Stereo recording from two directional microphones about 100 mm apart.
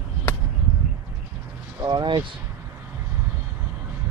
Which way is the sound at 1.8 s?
45° right (ahead or behind).